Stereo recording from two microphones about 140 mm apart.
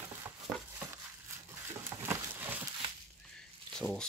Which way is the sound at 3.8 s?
5° left (ahead or behind).